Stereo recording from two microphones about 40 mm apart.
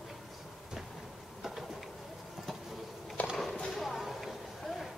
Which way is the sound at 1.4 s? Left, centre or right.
Centre.